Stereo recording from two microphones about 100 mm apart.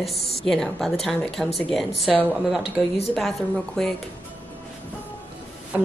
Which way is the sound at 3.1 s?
5° left (ahead or behind).